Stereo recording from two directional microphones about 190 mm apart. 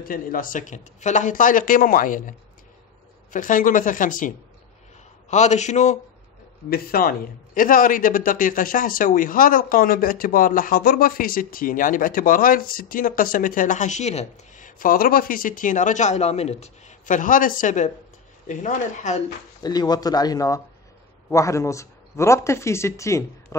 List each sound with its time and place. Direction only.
0.0 s a man's voice: 45° left (ahead or behind)
5.3 s speech: 40° left (ahead or behind)
6.7 s a man's voice: 50° left (ahead or behind)
19.6 s speech: 20° left (ahead or behind)